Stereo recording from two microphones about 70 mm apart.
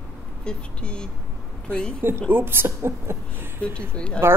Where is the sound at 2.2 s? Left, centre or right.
Right.